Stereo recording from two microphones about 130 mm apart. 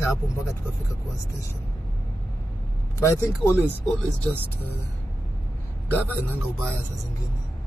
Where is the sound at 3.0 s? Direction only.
20° left (ahead or behind).